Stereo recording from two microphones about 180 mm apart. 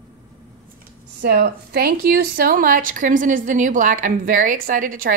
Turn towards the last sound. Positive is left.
turn(degrees=-50)  # may be behind; listen again after turning